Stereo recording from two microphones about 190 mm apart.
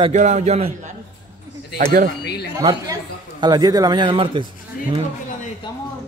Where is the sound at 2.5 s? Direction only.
20° right (ahead or behind).